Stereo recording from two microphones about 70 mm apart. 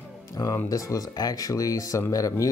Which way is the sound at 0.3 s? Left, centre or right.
Left.